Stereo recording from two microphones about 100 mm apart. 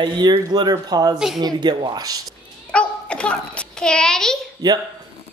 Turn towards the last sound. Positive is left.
turn(degrees=-40)  # may be behind; listen again after turning